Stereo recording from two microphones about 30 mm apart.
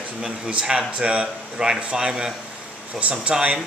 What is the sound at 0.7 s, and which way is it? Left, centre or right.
Speech, right.